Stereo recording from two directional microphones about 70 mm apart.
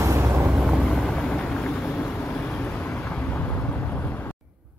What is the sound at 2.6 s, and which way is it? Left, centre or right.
Vehicle, left.